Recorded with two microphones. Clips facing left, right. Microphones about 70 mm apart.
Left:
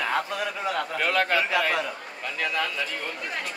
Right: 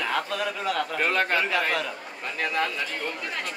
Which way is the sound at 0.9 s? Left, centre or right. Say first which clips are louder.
Left 2 dB; right.